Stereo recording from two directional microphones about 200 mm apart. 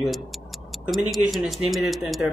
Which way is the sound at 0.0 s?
Centre (ahead or behind).